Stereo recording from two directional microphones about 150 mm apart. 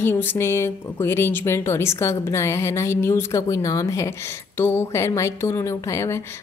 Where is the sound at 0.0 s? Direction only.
15° left (ahead or behind).